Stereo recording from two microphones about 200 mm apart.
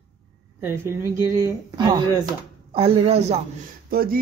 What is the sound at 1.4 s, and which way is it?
Speech, 25° right (ahead or behind).